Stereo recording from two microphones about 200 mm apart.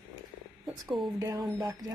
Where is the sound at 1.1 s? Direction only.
15° right (ahead or behind).